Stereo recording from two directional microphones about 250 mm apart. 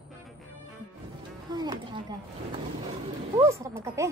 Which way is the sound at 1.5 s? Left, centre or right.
Centre.